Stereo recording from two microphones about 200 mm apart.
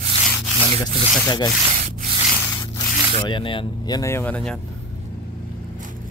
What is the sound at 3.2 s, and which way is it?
Speech, 25° left (ahead or behind).